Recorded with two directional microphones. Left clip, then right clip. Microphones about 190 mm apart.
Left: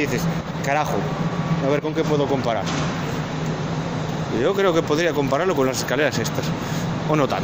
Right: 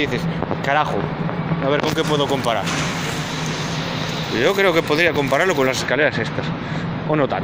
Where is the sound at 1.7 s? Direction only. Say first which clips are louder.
Right 3 dB; 15° left (ahead or behind).